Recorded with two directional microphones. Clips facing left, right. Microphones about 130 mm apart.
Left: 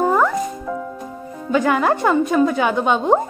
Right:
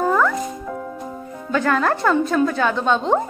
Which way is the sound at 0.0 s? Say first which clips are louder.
Left 2 dB; 20° left (ahead or behind).